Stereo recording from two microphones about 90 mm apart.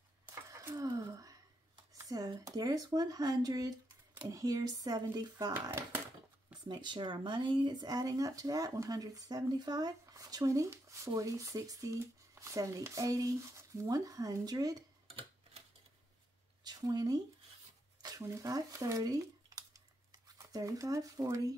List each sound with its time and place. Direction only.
0.3 s a sound: 30° right (ahead or behind)
2.0 s speech: 45° right (ahead or behind)
5.5 s speech: 25° right (ahead or behind)
6.6 s speech: 55° right (ahead or behind)
16.6 s speech: 45° right (ahead or behind)
18.0 s a sound: 35° right (ahead or behind)